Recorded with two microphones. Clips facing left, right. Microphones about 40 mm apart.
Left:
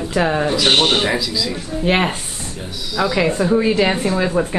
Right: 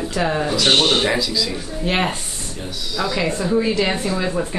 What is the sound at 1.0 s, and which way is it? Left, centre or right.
Speech, centre.